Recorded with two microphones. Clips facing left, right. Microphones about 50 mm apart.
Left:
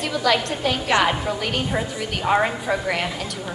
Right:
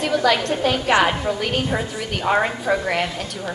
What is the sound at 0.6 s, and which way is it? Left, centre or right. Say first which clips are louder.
A woman's voice: right 4 dB; centre.